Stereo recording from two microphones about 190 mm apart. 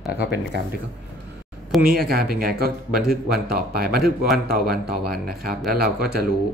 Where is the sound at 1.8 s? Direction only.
50° right (ahead or behind).